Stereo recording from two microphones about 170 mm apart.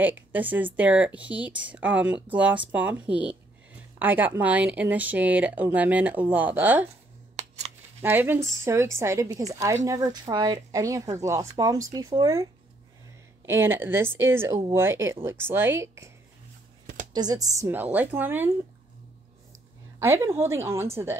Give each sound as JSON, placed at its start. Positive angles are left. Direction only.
{"t": 0.0, "sound": "speech", "side_deg": -10}
{"t": 7.3, "sound": "scissors", "side_deg": -40}
{"t": 8.0, "sound": "speech", "side_deg": -10}
{"t": 13.5, "sound": "speech", "side_deg": -15}
{"t": 16.8, "sound": "a sound", "side_deg": -50}
{"t": 17.1, "sound": "speech", "side_deg": -25}
{"t": 20.0, "sound": "speech", "side_deg": -15}